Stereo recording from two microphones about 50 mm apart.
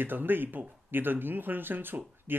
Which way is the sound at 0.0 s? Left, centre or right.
Right.